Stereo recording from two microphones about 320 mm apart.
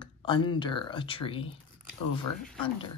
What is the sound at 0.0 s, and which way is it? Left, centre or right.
Speech, centre.